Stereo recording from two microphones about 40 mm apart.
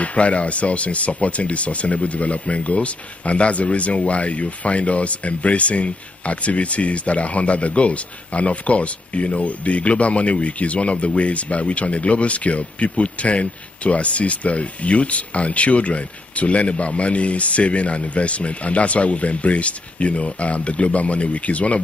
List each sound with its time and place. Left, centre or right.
0.0 s speech: left